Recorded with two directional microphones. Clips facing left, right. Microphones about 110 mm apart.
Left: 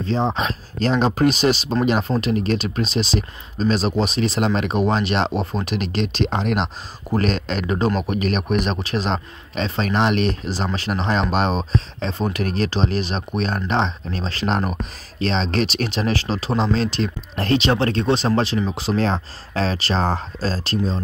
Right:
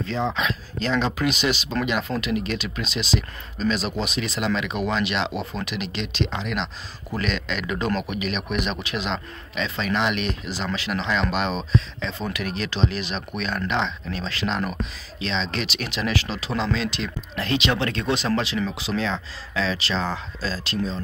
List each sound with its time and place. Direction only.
0.0 s speech: 35° left (ahead or behind)